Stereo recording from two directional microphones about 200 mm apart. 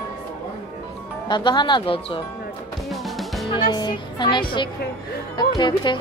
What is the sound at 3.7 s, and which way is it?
A woman's voice, 20° left (ahead or behind).